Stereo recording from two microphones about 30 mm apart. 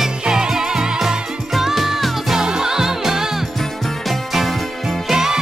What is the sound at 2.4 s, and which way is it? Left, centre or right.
Music, right.